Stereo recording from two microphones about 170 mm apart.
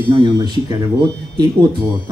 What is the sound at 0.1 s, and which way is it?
Speech, 25° right (ahead or behind).